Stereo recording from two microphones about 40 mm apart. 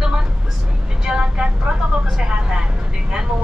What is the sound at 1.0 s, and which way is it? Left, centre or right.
Speech, centre.